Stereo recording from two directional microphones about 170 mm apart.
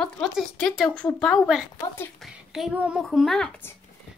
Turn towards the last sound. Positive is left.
turn(degrees=10)  # may be behind; listen again after turning